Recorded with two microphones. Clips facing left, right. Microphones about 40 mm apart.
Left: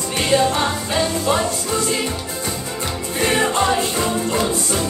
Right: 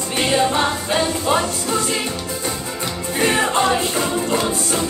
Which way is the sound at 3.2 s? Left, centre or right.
Right.